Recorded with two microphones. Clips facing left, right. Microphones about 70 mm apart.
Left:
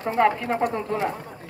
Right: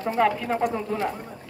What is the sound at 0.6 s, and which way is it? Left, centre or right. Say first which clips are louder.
Speech: left 2 dB; centre.